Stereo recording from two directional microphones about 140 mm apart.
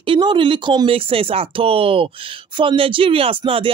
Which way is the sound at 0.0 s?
35° right (ahead or behind).